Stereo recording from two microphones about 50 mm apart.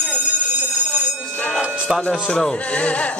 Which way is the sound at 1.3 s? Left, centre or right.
Left.